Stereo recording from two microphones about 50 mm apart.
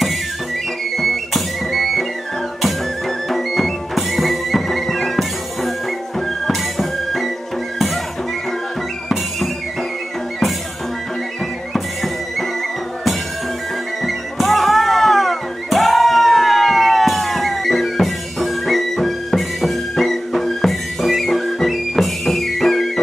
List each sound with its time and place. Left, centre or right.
0.9 s music: centre
11.7 s music: centre
14.0 s music: centre